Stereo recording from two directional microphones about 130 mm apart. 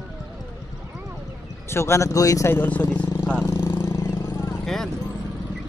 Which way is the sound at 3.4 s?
30° left (ahead or behind).